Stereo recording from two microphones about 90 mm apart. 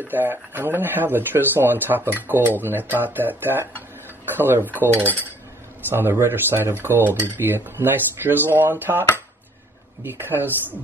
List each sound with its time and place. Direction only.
0.1 s speech: 20° right (ahead or behind)
5.9 s speech: 25° right (ahead or behind)
10.0 s speech: 20° right (ahead or behind)